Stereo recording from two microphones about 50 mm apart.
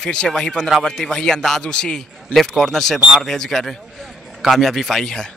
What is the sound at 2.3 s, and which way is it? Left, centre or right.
A man's voice, centre.